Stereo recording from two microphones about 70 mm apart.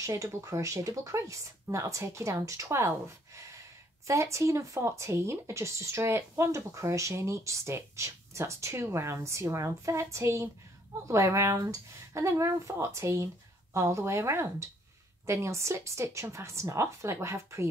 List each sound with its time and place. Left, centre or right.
0.0 s speech: right
4.1 s speech: right